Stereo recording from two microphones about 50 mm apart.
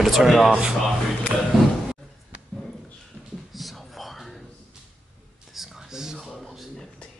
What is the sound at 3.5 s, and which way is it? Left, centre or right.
Whispering, centre.